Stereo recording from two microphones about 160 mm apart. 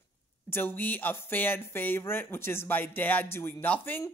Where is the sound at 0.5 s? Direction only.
15° left (ahead or behind).